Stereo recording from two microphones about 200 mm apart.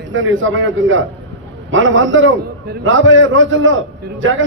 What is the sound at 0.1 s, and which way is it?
A man's voice, 75° right (ahead or behind).